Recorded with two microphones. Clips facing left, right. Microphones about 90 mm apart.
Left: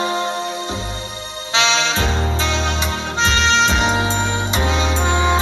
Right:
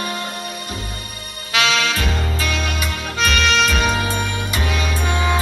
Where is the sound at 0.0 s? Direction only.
25° left (ahead or behind).